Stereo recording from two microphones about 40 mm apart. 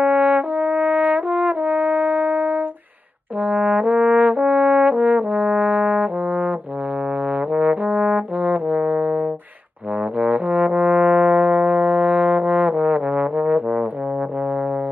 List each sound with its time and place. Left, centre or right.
0.0 s brass instrument: right
7.5 s trombone: right
10.2 s music: right